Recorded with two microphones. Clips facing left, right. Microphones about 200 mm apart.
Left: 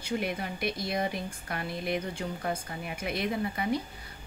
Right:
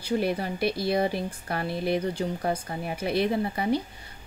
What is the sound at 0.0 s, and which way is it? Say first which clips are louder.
Speech: right 6 dB; 35° right (ahead or behind).